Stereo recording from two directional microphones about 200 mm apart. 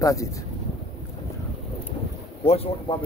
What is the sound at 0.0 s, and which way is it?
Speech, 15° left (ahead or behind).